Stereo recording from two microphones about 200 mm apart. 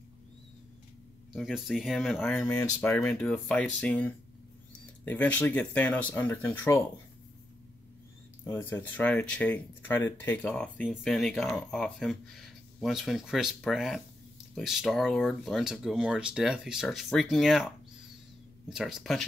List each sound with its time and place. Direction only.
1.3 s speech: centre (ahead or behind)
8.5 s speech: 10° left (ahead or behind)